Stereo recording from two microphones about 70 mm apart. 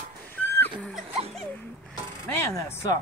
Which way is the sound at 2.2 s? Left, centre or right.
Left.